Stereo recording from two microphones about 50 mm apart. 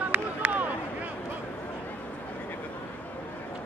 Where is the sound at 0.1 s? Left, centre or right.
Right.